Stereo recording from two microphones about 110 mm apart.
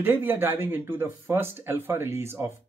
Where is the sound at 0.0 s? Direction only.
20° right (ahead or behind).